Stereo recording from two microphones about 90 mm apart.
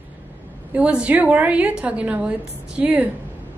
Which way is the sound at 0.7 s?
15° right (ahead or behind).